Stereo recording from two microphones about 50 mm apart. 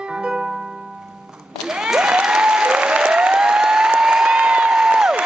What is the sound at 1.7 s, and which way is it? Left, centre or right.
Applause, centre.